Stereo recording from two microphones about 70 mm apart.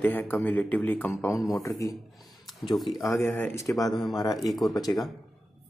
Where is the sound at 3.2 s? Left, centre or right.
Left.